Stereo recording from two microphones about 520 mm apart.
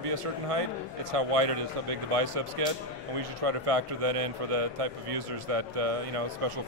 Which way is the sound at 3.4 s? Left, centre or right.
Right.